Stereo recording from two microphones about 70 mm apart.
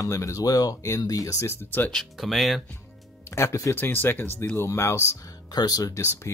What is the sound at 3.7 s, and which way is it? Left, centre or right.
Speech, left.